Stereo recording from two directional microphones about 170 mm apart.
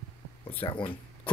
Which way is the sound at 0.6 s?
30° left (ahead or behind).